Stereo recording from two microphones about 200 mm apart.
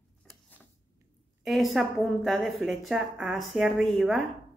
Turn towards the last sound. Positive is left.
turn(degrees=0)  # may be behind; listen again after turning